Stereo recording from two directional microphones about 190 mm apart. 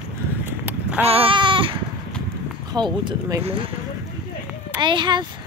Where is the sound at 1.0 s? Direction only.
30° right (ahead or behind).